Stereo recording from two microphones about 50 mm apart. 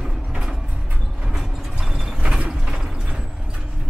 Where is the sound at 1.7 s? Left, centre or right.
Centre.